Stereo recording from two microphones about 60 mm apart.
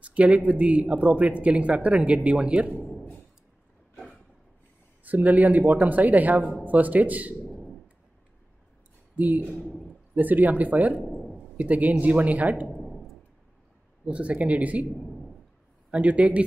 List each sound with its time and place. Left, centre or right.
0.0 s speech: right
2.9 s a sound: centre
5.0 s speech: right
9.1 s speech: right
11.1 s a sound: centre
11.5 s speech: right
12.6 s a sound: centre
14.0 s speech: centre
15.9 s speech: right